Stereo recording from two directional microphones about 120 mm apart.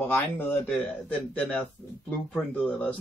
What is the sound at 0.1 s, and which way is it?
Speech, 20° left (ahead or behind).